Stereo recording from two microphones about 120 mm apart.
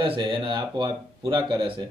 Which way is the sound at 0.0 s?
45° right (ahead or behind).